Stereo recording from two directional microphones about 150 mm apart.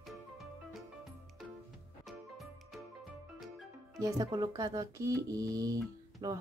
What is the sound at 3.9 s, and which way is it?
Speech, 25° right (ahead or behind).